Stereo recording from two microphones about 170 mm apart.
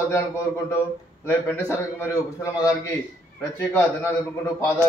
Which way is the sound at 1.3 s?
15° left (ahead or behind).